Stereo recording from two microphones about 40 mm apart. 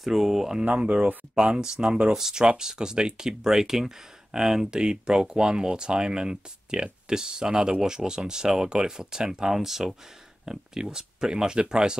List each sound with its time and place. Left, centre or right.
0.0 s speech: centre; by 2.1 s right
2.1 s speech: centre